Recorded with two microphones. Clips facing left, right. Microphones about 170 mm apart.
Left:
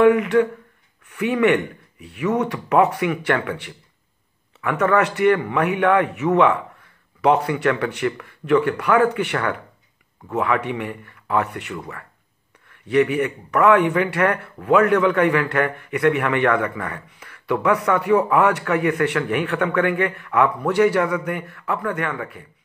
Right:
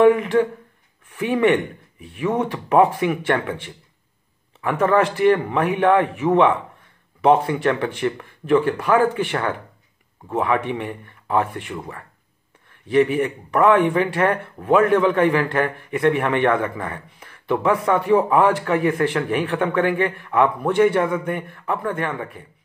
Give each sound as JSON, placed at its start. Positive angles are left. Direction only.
{"t": 0.0, "sound": "speech", "side_deg": -25}